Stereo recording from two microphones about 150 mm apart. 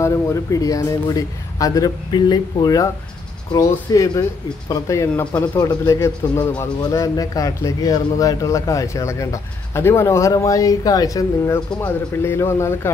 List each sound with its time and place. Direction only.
0.0 s speech: 20° left (ahead or behind)